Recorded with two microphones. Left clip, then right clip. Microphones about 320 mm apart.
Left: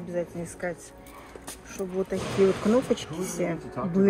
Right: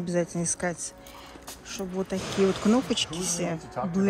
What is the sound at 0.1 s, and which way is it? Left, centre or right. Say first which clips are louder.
Speech: right 3 dB; centre.